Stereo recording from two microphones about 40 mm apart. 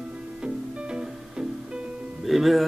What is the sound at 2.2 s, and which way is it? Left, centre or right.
Music, centre.